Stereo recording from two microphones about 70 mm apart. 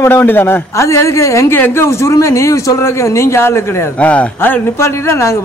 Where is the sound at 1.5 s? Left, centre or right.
Left.